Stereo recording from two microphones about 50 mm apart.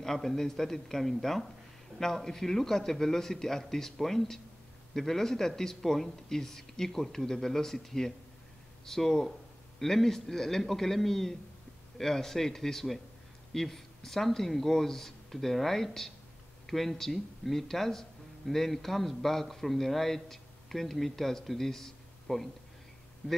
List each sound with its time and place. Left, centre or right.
0.0 s a man's voice: centre
23.2 s a man's voice: left